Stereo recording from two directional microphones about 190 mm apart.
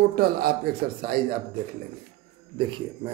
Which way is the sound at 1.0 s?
55° right (ahead or behind).